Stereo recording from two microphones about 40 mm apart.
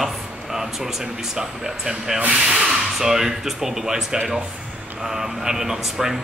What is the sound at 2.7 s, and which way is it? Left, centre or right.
Speech, centre.